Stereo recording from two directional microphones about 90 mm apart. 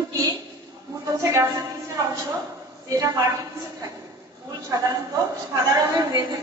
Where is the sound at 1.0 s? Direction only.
40° right (ahead or behind).